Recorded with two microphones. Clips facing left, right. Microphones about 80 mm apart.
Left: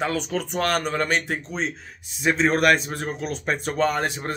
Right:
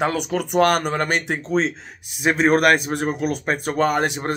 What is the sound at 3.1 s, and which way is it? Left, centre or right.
Speech, right.